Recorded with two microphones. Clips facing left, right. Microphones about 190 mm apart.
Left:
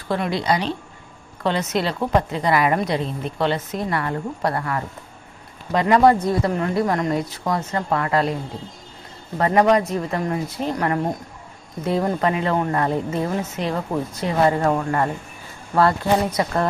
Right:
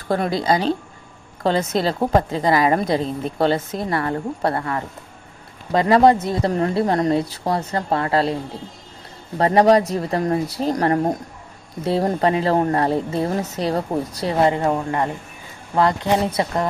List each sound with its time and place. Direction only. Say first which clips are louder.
0.1 s speech: right 2 dB; 40° right (ahead or behind)
9.4 s speech: right 2 dB; 35° right (ahead or behind)
14.5 s speech: even; 20° right (ahead or behind)